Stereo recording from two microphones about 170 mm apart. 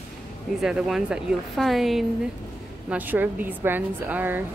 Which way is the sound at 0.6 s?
5° right (ahead or behind).